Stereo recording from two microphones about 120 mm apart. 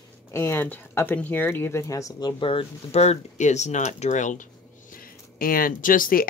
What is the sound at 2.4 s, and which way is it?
Speech, 55° left (ahead or behind).